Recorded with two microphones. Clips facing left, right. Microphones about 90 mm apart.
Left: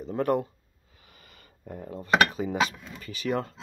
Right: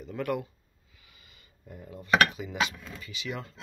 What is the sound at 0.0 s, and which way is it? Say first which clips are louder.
Speech: left 6 dB; 35° left (ahead or behind).